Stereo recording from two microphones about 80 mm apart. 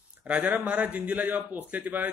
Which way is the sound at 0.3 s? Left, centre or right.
Centre.